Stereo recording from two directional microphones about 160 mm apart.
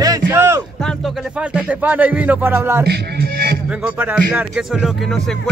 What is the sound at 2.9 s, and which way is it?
Speech, 70° right (ahead or behind).